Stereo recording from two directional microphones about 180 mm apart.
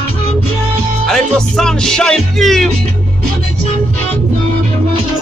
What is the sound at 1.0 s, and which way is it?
Music, 5° left (ahead or behind).